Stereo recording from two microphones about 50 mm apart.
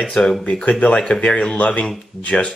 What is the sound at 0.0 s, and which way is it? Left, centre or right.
Speech, centre.